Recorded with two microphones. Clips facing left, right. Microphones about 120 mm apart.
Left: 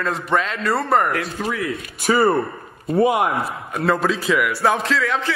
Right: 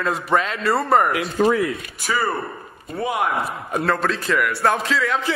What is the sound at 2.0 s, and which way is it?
Speech, 25° left (ahead or behind).